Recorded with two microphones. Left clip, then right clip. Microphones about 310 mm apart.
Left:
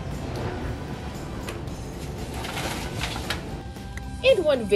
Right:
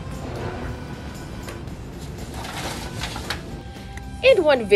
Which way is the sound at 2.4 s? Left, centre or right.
Centre.